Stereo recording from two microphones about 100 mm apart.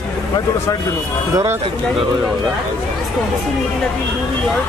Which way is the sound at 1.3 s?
30° right (ahead or behind).